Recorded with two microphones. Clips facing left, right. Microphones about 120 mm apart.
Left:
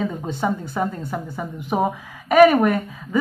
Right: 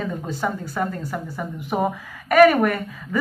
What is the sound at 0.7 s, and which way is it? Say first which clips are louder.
A woman's voice: left 1 dB; 15° left (ahead or behind).